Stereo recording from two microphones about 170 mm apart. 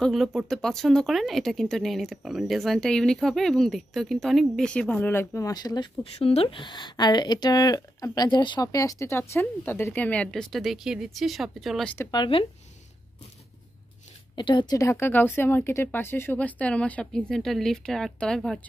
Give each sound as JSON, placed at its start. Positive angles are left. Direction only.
{"t": 0.0, "sound": "speech", "side_deg": 0}
{"t": 6.1, "sound": "speech", "side_deg": 35}
{"t": 12.1, "sound": "speech", "side_deg": 30}
{"t": 14.3, "sound": "speech", "side_deg": 30}